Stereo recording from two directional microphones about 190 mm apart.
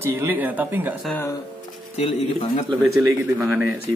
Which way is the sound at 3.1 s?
15° right (ahead or behind).